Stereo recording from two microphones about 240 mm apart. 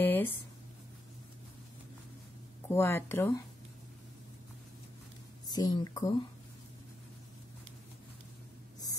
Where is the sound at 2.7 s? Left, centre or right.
Centre.